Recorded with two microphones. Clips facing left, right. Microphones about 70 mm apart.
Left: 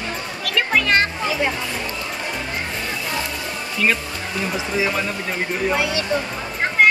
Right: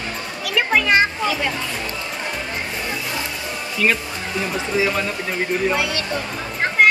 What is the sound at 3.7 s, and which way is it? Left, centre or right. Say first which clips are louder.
Speech: right 1 dB; centre.